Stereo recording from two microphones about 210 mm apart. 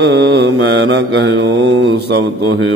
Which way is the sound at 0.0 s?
55° right (ahead or behind).